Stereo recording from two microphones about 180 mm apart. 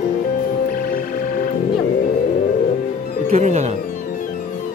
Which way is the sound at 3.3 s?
40° right (ahead or behind).